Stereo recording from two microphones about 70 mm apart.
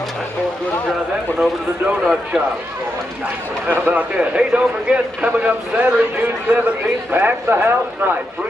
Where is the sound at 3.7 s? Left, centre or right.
Right.